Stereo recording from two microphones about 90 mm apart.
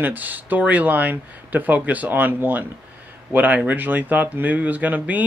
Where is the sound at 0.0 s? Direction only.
20° right (ahead or behind).